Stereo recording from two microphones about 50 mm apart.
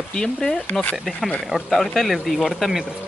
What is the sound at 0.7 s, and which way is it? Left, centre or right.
Speech, left.